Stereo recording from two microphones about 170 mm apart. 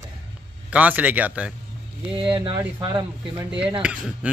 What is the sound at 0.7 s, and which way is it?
Speech, 10° right (ahead or behind).